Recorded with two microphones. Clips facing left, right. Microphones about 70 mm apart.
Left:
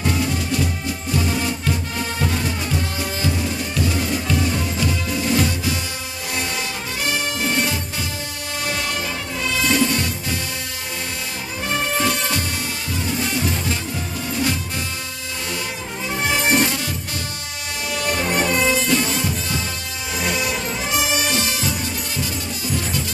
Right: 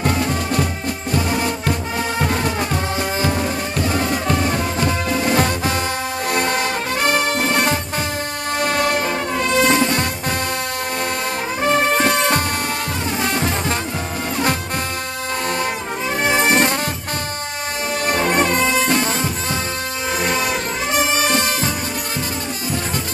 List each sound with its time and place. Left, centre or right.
0.0 s music: right
11.6 s music: right
16.2 s music: right
18.0 s music: right